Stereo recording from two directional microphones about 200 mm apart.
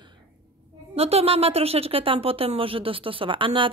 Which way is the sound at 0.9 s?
30° right (ahead or behind).